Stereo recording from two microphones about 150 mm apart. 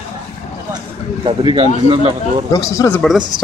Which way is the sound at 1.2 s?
35° right (ahead or behind).